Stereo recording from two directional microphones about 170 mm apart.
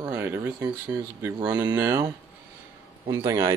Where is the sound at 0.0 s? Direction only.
15° right (ahead or behind).